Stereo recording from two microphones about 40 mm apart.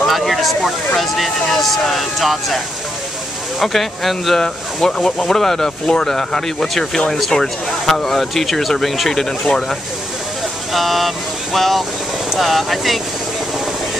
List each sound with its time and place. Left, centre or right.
0.0 s speech: centre
9.4 s speech: centre
10.7 s vehicle: centre
12.4 s speech: centre